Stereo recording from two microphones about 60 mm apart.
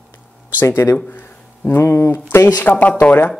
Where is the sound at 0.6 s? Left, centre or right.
Left.